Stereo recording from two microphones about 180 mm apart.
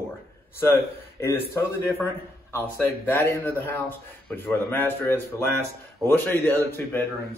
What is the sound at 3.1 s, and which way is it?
Speech, 10° left (ahead or behind).